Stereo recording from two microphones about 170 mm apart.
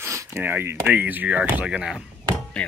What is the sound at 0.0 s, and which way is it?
Speech, 15° right (ahead or behind).